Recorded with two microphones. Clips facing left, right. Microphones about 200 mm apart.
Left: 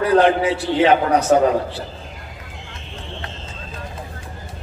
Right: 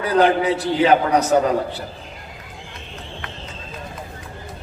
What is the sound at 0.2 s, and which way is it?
Speech, 35° right (ahead or behind).